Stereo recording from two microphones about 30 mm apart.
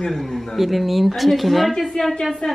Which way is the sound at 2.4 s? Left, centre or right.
Left.